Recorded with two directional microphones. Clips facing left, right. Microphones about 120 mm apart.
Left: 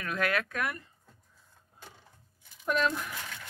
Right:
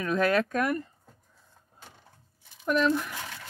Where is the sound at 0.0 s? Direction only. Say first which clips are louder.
Right 6 dB; 30° right (ahead or behind).